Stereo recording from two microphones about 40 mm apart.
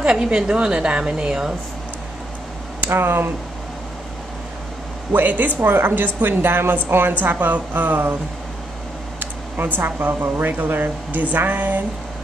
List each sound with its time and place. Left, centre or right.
0.0 s a woman's voice: right
2.8 s speech: right
5.1 s a woman's voice: right
5.6 s a woman's voice: right
9.2 s speech: right